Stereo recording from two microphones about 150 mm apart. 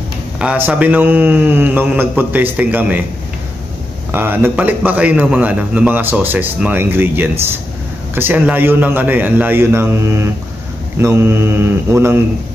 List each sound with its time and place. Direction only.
0.4 s a man's voice: 10° right (ahead or behind)
4.1 s a man's voice: 15° right (ahead or behind)